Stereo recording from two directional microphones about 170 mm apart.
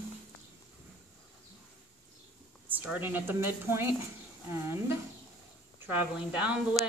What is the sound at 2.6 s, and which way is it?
A man's voice, 10° right (ahead or behind).